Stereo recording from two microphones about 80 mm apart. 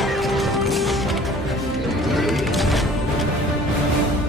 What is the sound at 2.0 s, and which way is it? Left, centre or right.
Music, centre.